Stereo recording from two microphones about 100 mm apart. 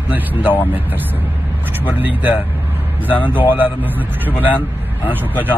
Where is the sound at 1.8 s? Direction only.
20° right (ahead or behind).